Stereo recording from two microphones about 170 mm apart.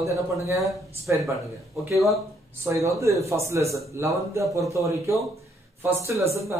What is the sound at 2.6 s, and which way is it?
A man's voice, 20° right (ahead or behind).